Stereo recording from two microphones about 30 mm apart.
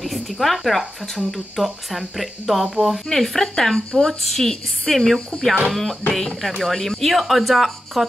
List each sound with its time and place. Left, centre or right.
0.0 s speech: centre
3.1 s speech: centre
5.3 s speech: left
5.7 s speech: centre
7.2 s speech: centre